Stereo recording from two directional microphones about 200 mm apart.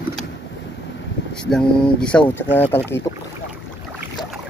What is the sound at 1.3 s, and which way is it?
Speech, 5° left (ahead or behind).